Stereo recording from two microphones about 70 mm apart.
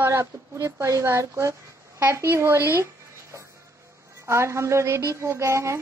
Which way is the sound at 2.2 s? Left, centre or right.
Right.